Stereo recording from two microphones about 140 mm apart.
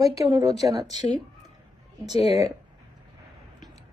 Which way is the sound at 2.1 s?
45° left (ahead or behind).